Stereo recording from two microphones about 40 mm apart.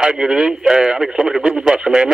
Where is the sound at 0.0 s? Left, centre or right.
Centre.